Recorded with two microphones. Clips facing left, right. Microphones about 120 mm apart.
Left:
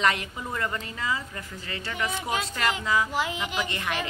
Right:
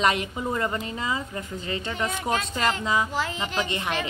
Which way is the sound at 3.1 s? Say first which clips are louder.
Even; 15° left (ahead or behind).